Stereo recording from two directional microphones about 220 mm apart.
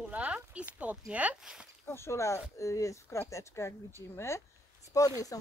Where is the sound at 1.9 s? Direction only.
10° left (ahead or behind).